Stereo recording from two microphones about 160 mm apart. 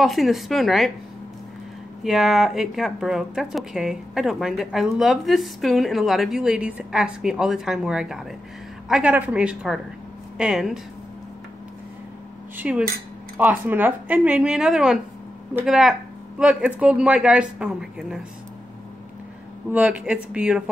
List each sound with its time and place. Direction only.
0.0 s speech: centre (ahead or behind)
2.0 s speech: centre (ahead or behind)
12.5 s speech: 5° right (ahead or behind)
19.7 s speech: 10° right (ahead or behind)